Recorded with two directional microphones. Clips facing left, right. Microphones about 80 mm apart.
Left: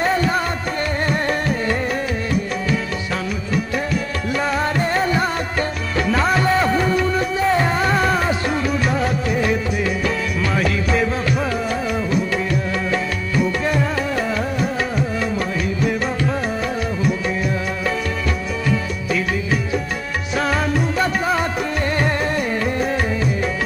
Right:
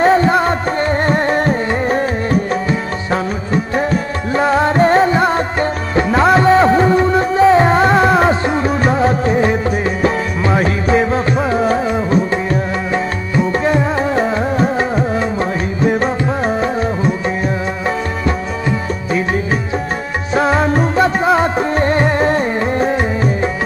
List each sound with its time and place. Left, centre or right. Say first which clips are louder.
0.0 s music: right 8 dB; right